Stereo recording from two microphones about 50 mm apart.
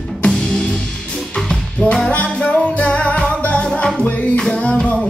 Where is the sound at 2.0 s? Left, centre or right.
Left.